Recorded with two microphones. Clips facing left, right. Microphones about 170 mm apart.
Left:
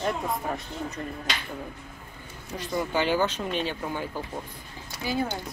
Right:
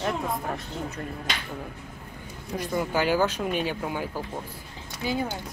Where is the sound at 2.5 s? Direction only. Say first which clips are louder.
Right 1 dB; 10° right (ahead or behind).